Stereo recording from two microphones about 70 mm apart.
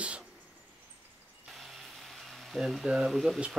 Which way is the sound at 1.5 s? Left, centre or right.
Centre.